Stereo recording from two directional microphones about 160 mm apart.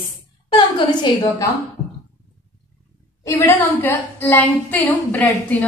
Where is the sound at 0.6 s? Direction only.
30° left (ahead or behind).